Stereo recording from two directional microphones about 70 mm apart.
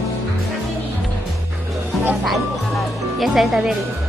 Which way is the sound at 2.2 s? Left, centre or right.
Centre.